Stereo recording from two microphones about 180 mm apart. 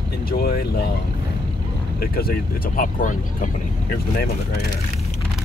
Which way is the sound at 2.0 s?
55° left (ahead or behind).